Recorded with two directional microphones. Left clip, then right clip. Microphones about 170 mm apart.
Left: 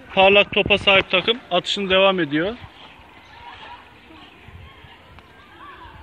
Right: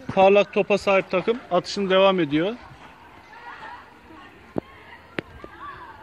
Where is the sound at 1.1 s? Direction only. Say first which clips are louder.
Left 3 dB; 25° right (ahead or behind).